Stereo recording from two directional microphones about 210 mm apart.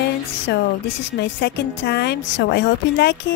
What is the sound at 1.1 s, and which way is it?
A woman's voice, 50° left (ahead or behind).